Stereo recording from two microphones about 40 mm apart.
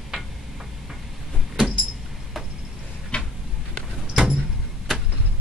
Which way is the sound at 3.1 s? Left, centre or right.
Left.